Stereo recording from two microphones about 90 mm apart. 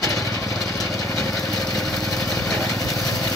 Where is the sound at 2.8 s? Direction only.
35° left (ahead or behind).